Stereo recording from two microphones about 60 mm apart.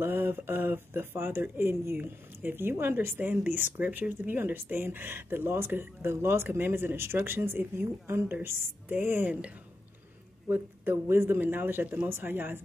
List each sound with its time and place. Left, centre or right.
0.0 s speech: right
10.5 s speech: right